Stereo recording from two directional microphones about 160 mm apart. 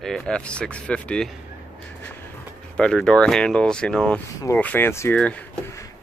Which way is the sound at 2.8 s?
5° left (ahead or behind).